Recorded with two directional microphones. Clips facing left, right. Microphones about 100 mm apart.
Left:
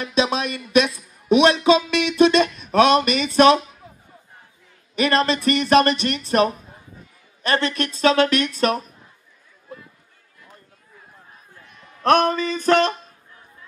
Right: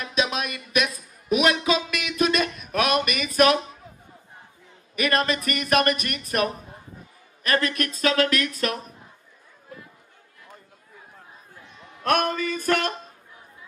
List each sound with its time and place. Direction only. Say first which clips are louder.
0.0 s a sound: left 5 dB; 30° left (ahead or behind)
1.3 s speech: left 6 dB; 30° left (ahead or behind)
4.9 s speech: left 4 dB; 30° left (ahead or behind)
12.4 s speech: left 6 dB; 25° left (ahead or behind)